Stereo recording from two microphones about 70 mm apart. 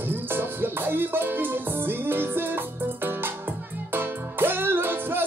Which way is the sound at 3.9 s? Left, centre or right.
Right.